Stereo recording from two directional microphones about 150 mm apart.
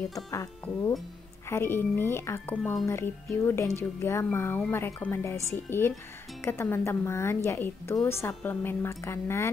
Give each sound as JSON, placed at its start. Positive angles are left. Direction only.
{"t": 0.1, "sound": "speech", "side_deg": 20}
{"t": 2.9, "sound": "speech", "side_deg": 15}